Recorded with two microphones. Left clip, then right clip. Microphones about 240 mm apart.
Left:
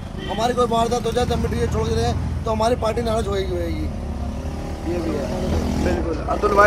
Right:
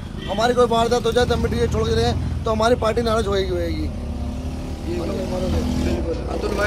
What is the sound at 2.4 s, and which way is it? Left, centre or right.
Speech, right.